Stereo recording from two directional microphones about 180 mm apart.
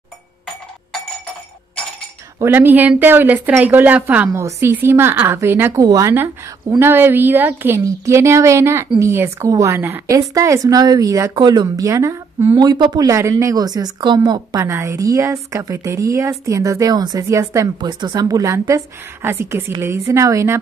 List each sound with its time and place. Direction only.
2.3 s a woman's voice: 10° right (ahead or behind)